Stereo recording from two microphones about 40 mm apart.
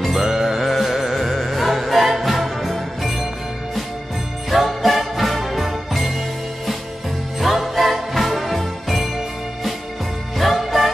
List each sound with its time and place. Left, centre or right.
0.0 s music: centre
4.5 s jingle bell: centre
7.3 s music: centre